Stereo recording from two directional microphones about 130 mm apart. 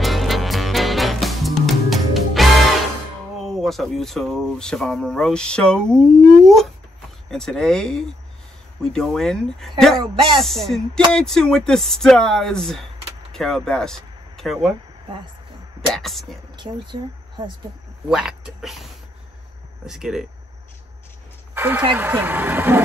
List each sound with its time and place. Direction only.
0.0 s music: centre (ahead or behind)
3.3 s speech: centre (ahead or behind)
10.1 s speech: 40° right (ahead or behind)
10.4 s speech: centre (ahead or behind)
15.9 s speech: centre (ahead or behind)
16.5 s speech: 35° right (ahead or behind)
18.1 s speech: 5° right (ahead or behind)
19.9 s speech: 5° right (ahead or behind)
21.5 s speech: 15° right (ahead or behind)